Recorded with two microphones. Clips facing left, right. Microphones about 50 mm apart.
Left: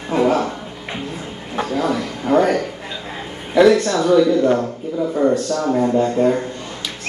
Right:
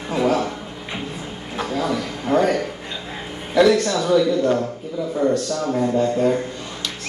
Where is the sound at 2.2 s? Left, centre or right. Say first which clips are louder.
Left 3 dB; centre.